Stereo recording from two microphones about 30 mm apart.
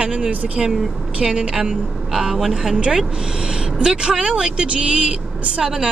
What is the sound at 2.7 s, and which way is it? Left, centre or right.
Speech, right.